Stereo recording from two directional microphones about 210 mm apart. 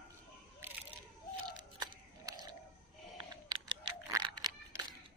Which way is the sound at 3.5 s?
20° right (ahead or behind).